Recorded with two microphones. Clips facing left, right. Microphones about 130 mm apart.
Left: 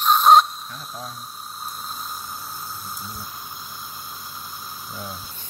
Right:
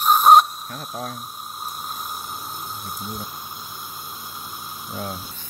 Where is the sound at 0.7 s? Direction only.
55° right (ahead or behind).